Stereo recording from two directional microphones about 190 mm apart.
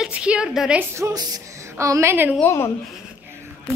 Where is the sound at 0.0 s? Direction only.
5° right (ahead or behind).